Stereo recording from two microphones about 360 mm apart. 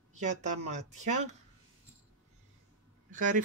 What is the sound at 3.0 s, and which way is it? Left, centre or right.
Speech, right.